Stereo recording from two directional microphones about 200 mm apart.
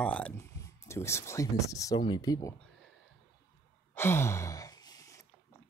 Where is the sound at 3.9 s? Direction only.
10° left (ahead or behind).